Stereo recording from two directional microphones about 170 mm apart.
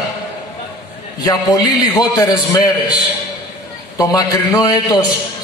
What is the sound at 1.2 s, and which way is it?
A man's voice, 20° left (ahead or behind).